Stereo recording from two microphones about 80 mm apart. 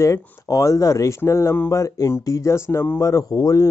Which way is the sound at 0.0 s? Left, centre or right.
Left.